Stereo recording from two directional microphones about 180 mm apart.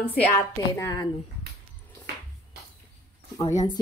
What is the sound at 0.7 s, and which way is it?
Speech, 20° left (ahead or behind).